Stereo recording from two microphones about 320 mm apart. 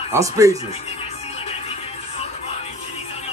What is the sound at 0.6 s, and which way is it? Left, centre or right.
Music, centre.